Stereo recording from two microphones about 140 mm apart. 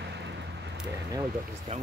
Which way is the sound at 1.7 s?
55° right (ahead or behind).